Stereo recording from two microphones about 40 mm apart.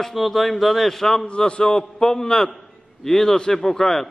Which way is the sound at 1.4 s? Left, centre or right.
Left.